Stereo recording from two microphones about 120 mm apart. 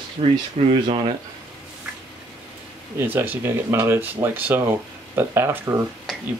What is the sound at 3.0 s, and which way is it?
Speech, 15° right (ahead or behind).